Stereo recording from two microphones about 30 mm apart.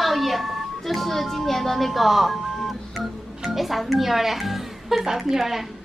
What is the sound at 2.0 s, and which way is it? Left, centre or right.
A woman's voice, centre.